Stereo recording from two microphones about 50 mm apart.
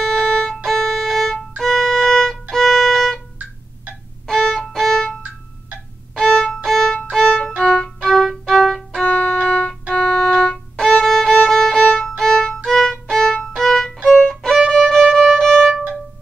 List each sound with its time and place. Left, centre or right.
0.0 s music: centre
4.3 s violin: centre
6.2 s violin: centre
9.0 s music: left
9.8 s music: centre
10.8 s violin: centre